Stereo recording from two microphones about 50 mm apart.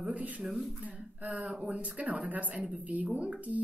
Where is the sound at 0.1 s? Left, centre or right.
Right.